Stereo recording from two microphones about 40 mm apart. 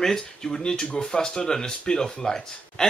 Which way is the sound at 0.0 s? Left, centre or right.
Centre.